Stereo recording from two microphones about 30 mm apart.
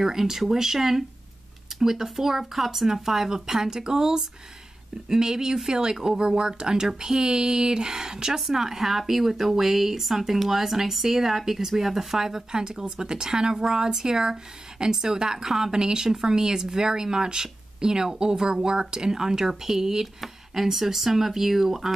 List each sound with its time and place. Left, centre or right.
0.0 s a woman's voice: centre